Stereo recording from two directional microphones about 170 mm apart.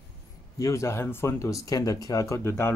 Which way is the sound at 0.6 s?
20° left (ahead or behind).